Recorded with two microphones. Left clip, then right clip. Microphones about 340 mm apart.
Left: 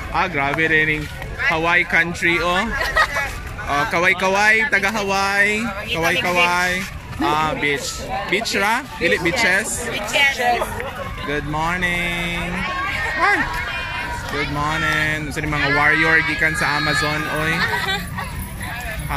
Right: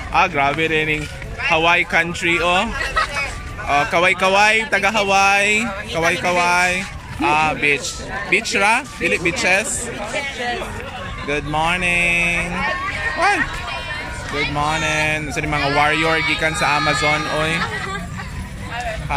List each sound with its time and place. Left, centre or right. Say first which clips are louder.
0.1 s speech: right 4 dB; centre
2.8 s a sound: left 2 dB; centre
3.6 s speech: right 2 dB; centre
11.2 s speech: right 3 dB; centre